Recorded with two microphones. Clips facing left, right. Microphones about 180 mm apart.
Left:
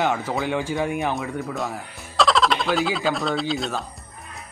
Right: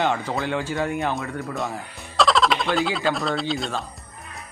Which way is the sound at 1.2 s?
Centre (ahead or behind).